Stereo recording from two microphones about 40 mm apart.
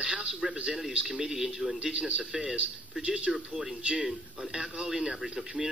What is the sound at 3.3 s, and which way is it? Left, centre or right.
Speech, centre.